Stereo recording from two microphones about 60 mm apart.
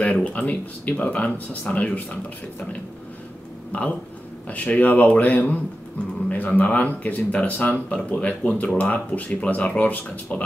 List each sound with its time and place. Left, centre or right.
0.0 s speech: left
4.5 s speech: left